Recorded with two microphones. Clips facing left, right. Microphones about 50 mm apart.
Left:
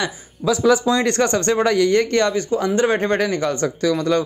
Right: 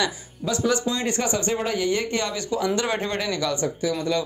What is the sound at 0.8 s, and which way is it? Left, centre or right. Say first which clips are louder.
A man's voice: left 7 dB; left.